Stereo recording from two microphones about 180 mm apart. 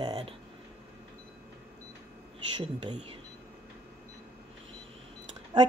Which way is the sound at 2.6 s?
25° right (ahead or behind).